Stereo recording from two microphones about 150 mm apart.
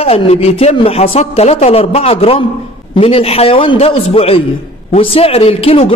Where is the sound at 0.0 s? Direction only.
40° left (ahead or behind).